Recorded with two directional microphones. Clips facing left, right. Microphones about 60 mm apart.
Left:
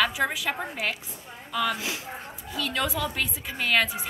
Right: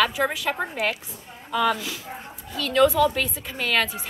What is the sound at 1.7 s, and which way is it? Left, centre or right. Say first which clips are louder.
Speech: left 1 dB; centre.